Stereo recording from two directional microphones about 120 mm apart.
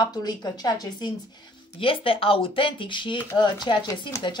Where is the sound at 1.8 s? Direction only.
50° left (ahead or behind).